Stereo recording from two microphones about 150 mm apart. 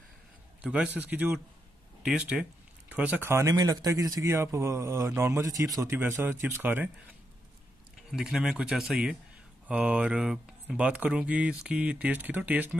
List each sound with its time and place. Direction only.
0.6 s speech: 10° right (ahead or behind)
8.1 s speech: centre (ahead or behind)